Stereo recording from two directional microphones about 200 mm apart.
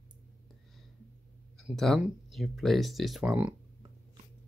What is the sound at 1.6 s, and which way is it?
Speech, centre (ahead or behind).